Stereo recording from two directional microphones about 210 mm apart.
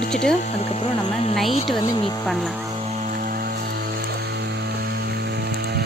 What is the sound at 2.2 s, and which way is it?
Speech, centre (ahead or behind).